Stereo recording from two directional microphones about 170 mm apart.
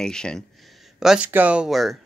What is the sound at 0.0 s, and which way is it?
Speech, 5° left (ahead or behind).